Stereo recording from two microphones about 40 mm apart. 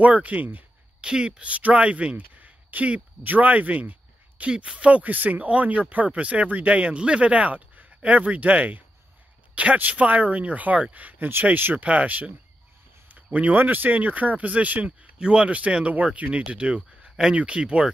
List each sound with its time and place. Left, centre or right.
0.0 s speech: right
1.0 s speech: right
1.4 s speech: right
4.5 s speech: right
5.0 s speech: right
13.1 s a sound: right
13.6 s speech: right
14.9 s speech: right